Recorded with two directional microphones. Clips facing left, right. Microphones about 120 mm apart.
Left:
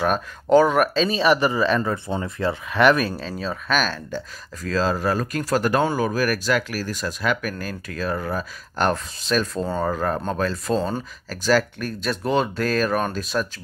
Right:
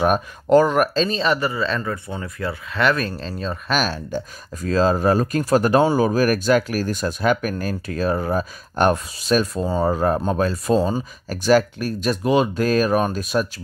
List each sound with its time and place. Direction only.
0.5 s speech: centre (ahead or behind); by 1.8 s 15° left (ahead or behind)
1.8 s speech: 25° left (ahead or behind)
2.7 s speech: 15° left (ahead or behind); by 4.2 s 10° right (ahead or behind)
4.6 s speech: 20° right (ahead or behind)
9.8 s speech: 20° right (ahead or behind)